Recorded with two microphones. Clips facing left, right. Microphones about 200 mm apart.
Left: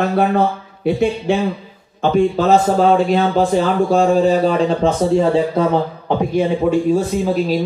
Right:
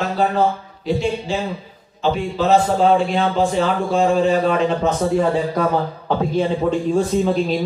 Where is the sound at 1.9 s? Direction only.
50° left (ahead or behind).